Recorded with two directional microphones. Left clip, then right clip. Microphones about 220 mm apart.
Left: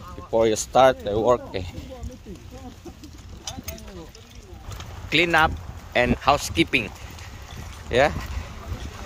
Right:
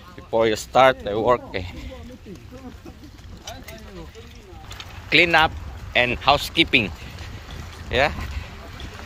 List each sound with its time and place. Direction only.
0.3 s speech: 20° left (ahead or behind)
5.1 s a man's voice: 10° left (ahead or behind)
7.9 s speech: 25° left (ahead or behind)